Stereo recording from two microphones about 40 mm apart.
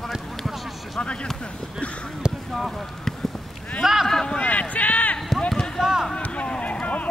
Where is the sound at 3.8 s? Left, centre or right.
Centre.